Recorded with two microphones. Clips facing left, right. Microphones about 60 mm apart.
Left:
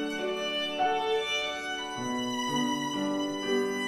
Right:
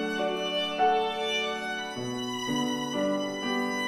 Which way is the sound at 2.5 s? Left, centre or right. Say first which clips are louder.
Right 2 dB; centre.